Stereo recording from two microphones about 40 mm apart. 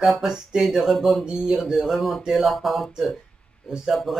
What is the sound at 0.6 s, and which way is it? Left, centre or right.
Speech, centre.